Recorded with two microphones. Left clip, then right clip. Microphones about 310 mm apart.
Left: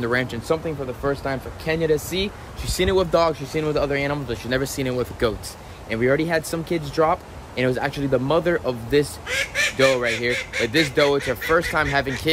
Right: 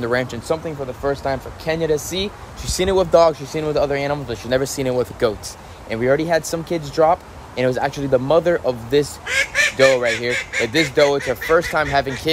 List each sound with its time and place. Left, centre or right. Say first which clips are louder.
0.0 s speech: right 2 dB; centre
9.2 s fowl: right 5 dB; right
10.7 s speech: right 3 dB; centre